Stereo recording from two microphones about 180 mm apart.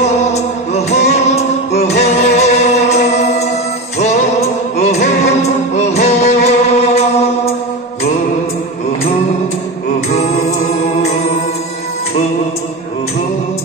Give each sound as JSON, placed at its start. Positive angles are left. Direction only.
{"t": 0.3, "sound": "music", "side_deg": 35}
{"t": 11.0, "sound": "music", "side_deg": 40}